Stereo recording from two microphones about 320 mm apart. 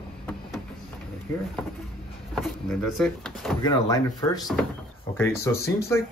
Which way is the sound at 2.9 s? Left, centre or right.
Centre.